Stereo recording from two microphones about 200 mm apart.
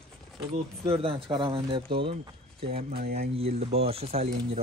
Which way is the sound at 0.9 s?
25° right (ahead or behind).